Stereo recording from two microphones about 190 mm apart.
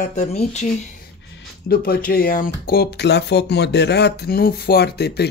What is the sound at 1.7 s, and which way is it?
Speech, 55° left (ahead or behind).